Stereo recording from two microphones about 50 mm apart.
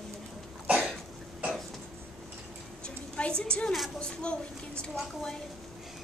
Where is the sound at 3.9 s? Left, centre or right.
Centre.